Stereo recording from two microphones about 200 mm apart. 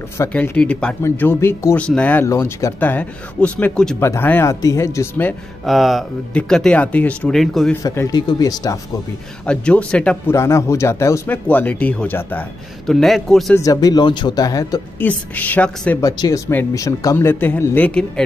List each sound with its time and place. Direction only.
0.2 s speech: 5° left (ahead or behind)
5.7 s speech: centre (ahead or behind)
7.8 s speech: 15° left (ahead or behind)
9.5 s speech: 5° left (ahead or behind)
13.6 s speech: 15° left (ahead or behind)
16.0 s speech: 15° left (ahead or behind)